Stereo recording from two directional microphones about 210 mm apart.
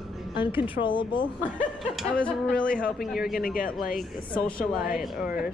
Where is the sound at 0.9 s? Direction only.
20° left (ahead or behind).